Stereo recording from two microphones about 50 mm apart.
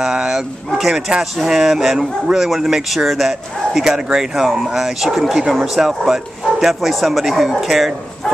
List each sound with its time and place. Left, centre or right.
0.0 s speech: centre